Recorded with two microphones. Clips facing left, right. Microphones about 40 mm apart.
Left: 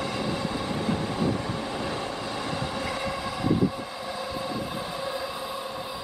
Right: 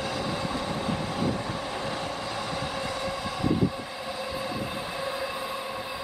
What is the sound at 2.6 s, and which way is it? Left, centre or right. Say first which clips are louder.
Train: left 1 dB; centre.